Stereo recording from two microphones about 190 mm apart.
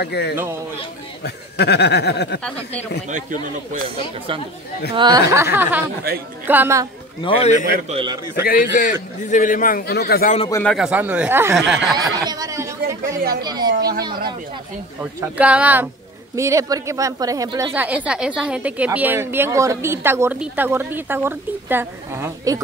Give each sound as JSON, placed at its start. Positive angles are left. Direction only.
{"t": 0.0, "sound": "speech", "side_deg": 60}
{"t": 3.1, "sound": "speech", "side_deg": -40}
{"t": 4.9, "sound": "a man's voice", "side_deg": -20}
{"t": 7.2, "sound": "a man's voice", "side_deg": 35}
{"t": 7.9, "sound": "a man's voice", "side_deg": -25}
{"t": 8.5, "sound": "a man's voice", "side_deg": 45}
{"t": 10.5, "sound": "a woman's voice", "side_deg": 5}
{"t": 12.2, "sound": "chatter", "side_deg": -20}
{"t": 13.4, "sound": "a man's voice", "side_deg": -20}
{"t": 13.7, "sound": "speech", "side_deg": -55}
{"t": 15.1, "sound": "a woman's voice", "side_deg": -5}